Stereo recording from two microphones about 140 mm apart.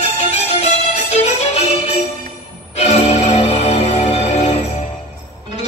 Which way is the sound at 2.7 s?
50° left (ahead or behind).